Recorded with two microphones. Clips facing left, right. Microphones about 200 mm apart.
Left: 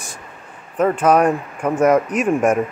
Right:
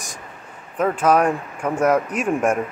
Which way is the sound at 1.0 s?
10° left (ahead or behind).